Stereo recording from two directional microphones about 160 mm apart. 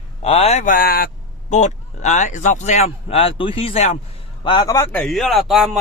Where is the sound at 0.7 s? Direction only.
65° left (ahead or behind).